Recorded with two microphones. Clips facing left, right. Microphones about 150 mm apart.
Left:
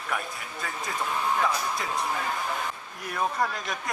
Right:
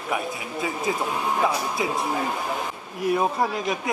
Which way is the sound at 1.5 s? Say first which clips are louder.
Right 4 dB; centre (ahead or behind).